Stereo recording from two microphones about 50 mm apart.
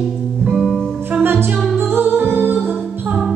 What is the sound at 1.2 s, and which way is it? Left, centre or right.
Music, right.